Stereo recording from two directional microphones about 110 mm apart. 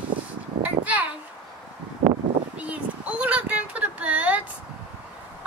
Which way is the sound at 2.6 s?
15° right (ahead or behind).